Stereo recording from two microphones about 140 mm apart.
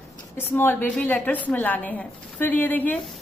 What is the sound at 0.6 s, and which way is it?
A woman's voice, 15° left (ahead or behind).